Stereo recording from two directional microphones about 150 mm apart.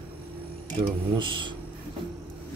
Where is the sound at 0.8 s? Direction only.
35° right (ahead or behind).